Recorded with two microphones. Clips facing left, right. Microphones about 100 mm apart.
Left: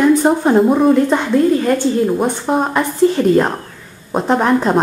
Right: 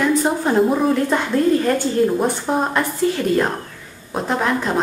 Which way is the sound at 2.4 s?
5° left (ahead or behind).